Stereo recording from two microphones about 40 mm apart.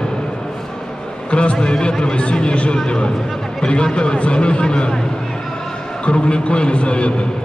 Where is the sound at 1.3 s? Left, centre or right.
Left.